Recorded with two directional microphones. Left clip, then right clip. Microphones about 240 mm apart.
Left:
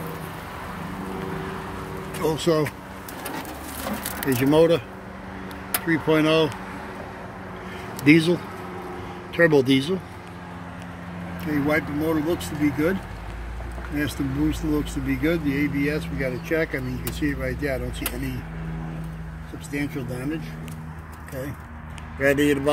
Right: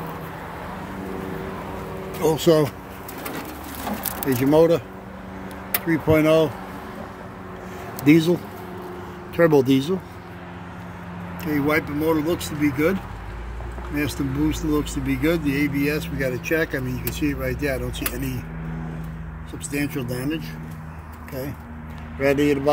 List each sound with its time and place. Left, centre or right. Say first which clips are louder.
2.2 s speech: right 4 dB; centre
4.3 s speech: right 1 dB; centre
5.9 s speech: right 2 dB; centre
8.0 s speech: right 1 dB; centre
9.4 s speech: right 1 dB; centre
11.4 s speech: right 2 dB; centre
13.9 s speech: right 1 dB; centre
19.7 s speech: right 3 dB; centre
22.2 s speech: right 1 dB; centre